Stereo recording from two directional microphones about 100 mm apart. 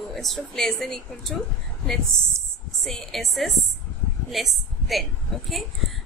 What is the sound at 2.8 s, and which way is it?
Speech, centre (ahead or behind).